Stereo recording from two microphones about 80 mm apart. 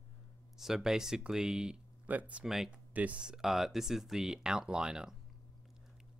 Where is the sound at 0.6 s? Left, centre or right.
Centre.